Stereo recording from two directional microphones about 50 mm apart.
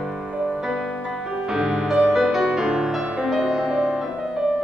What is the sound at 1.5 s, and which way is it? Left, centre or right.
Music, centre.